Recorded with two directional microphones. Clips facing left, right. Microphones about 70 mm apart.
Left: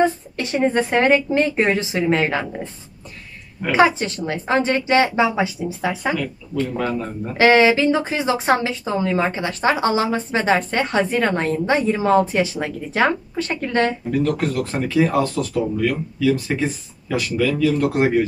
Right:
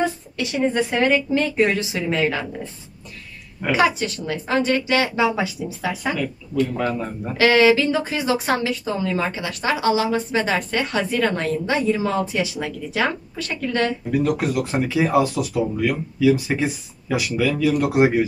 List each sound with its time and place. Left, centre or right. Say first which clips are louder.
0.0 s speech: left 4 dB; left
3.7 s a woman's voice: left 3 dB; left
6.8 s speech: left 1 dB; centre
7.3 s speech: left 1 dB; left
14.1 s speech: right 2 dB; centre